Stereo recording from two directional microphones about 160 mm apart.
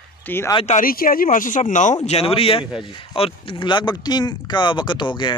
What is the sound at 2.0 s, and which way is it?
Speech, 40° left (ahead or behind).